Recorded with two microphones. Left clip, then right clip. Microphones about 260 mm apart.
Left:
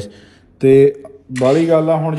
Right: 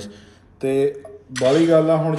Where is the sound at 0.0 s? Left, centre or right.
Left.